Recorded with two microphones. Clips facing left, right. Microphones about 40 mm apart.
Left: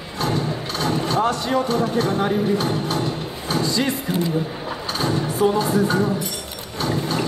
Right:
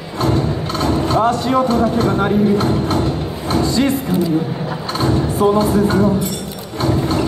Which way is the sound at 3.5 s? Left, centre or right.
Right.